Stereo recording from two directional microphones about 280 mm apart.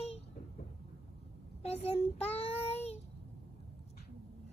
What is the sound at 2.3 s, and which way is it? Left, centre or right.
Child singing, left.